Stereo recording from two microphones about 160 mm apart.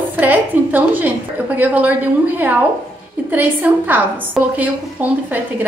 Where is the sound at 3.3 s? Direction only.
10° right (ahead or behind).